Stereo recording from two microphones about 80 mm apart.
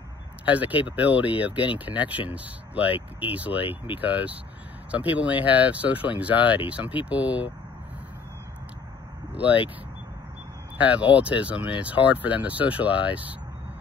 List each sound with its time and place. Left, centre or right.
0.5 s speech: centre
10.9 s speech: centre